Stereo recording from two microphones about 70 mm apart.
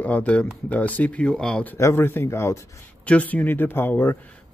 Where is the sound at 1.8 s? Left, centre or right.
Left.